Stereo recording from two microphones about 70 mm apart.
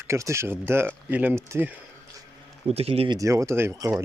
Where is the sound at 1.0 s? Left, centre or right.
Right.